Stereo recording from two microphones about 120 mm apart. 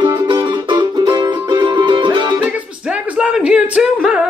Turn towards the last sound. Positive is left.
turn(degrees=-5)  # may be behind; listen again after turning